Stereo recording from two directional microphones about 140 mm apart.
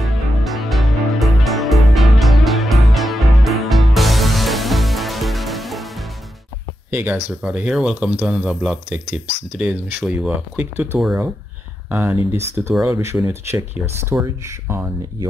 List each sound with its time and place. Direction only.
0.0 s music: centre (ahead or behind)
6.9 s speech: 15° right (ahead or behind)